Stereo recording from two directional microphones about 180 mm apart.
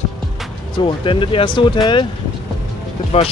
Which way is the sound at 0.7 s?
30° left (ahead or behind).